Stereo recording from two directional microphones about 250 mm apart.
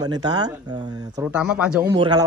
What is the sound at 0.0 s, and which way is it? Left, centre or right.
Speech, centre.